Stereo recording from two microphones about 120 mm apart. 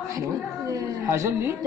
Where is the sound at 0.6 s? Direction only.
25° right (ahead or behind).